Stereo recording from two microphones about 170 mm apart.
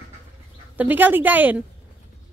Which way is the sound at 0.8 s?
10° right (ahead or behind).